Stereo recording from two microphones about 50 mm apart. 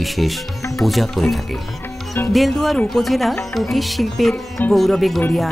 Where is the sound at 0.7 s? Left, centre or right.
Centre.